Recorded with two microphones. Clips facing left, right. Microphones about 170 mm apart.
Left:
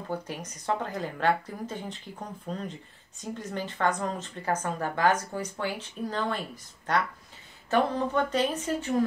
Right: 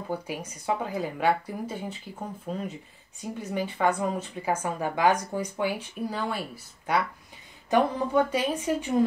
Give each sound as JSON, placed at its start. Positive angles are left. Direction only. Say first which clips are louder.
{"t": 0.1, "sound": "a woman's voice", "louder": "right 1 dB", "side_deg": -10}